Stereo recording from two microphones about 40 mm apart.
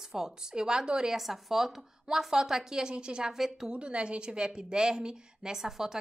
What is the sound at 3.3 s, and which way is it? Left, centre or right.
Speech, centre.